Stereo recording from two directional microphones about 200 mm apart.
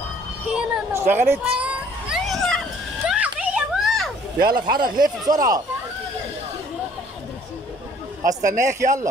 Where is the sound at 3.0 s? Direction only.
5° right (ahead or behind).